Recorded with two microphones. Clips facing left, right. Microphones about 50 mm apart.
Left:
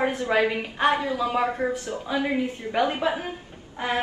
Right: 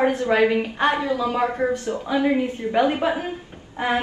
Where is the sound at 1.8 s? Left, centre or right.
Right.